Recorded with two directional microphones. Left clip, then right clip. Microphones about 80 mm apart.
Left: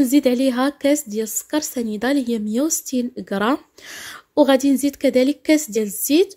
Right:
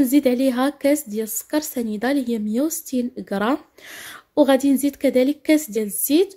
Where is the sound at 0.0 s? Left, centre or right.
Left.